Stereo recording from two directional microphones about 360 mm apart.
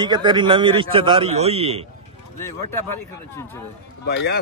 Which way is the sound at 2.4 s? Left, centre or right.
Centre.